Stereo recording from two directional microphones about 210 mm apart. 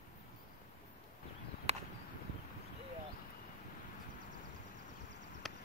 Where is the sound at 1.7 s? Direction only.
30° right (ahead or behind).